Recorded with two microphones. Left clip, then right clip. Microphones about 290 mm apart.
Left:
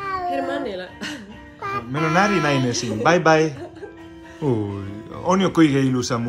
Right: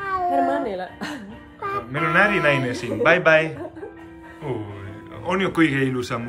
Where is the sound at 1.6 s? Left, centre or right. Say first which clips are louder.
Even; centre.